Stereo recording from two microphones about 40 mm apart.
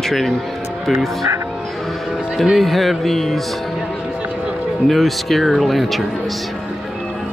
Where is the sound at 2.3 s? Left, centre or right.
Centre.